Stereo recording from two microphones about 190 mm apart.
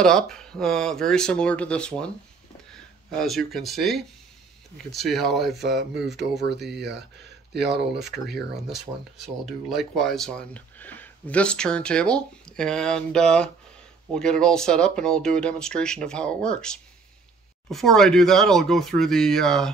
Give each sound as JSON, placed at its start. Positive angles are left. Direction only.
{"t": 0.0, "sound": "speech", "side_deg": 5}
{"t": 6.4, "sound": "speech", "side_deg": -60}
{"t": 8.5, "sound": "speech", "side_deg": 0}